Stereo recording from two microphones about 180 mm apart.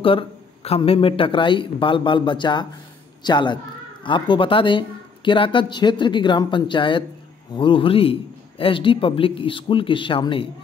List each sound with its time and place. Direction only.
0.0 s speech: 30° left (ahead or behind)